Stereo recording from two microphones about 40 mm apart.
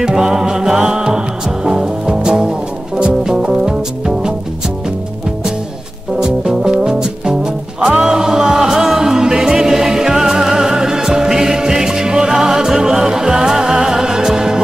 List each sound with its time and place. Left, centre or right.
0.0 s music: centre
6.1 s music: centre